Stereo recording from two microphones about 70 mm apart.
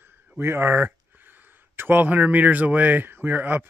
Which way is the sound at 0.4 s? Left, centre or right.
Right.